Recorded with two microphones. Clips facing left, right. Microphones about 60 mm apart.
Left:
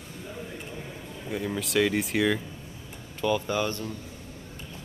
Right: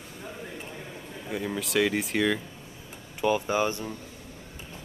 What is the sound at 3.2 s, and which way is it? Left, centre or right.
Speech, centre.